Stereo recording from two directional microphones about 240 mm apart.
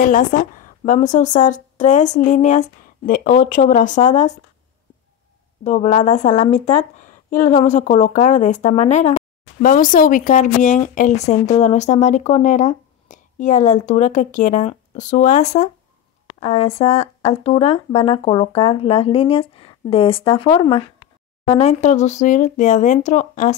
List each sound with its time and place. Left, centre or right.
0.0 s speech: left
5.6 s speech: left